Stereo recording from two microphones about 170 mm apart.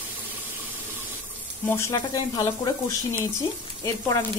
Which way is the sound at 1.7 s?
15° left (ahead or behind).